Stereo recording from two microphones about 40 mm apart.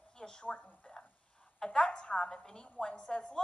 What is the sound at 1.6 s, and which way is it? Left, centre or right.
A woman's voice, centre.